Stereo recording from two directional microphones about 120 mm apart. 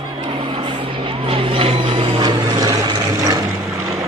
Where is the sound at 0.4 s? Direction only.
45° right (ahead or behind).